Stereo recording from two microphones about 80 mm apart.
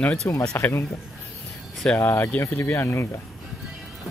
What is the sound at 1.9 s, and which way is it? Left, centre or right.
Speech, left.